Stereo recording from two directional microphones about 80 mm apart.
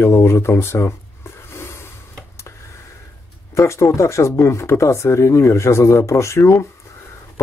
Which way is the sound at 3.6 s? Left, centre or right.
Left.